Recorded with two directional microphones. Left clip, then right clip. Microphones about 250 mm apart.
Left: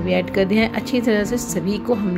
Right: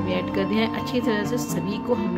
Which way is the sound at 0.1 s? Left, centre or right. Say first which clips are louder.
Left 7 dB; centre.